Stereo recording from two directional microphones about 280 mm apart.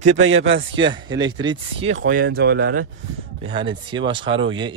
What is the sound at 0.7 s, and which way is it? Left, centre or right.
Speech, centre.